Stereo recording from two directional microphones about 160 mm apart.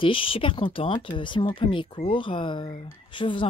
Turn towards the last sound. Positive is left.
turn(degrees=30)  # may be behind; listen again after turning